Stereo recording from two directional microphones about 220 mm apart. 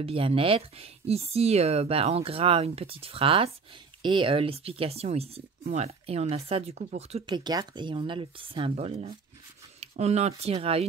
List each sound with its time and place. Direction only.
0.0 s speech: 25° right (ahead or behind)